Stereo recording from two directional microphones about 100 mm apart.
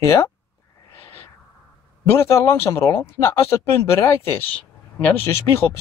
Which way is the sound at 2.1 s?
25° left (ahead or behind).